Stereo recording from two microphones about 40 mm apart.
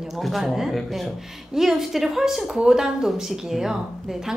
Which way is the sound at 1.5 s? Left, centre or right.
Centre.